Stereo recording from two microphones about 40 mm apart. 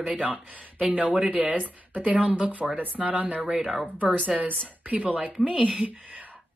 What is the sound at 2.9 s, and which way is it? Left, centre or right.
Speech, right.